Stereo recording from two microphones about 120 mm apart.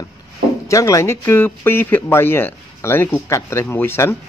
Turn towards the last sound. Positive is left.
turn(degrees=20)  # may be behind; listen again after turning